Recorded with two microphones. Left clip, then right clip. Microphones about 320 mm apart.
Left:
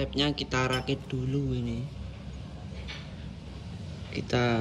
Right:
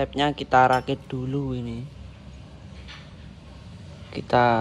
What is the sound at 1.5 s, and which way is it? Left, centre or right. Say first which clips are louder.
Speech: right 2 dB; centre.